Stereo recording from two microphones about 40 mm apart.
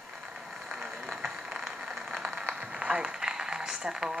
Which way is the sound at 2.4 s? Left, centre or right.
Right.